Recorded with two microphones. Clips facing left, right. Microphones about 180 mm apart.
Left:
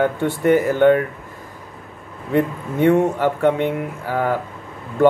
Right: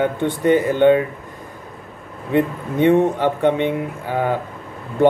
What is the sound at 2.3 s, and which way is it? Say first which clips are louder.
A man's voice: right 1 dB; 20° right (ahead or behind).